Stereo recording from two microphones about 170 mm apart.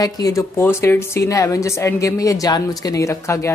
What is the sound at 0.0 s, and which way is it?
A woman's voice, 20° left (ahead or behind).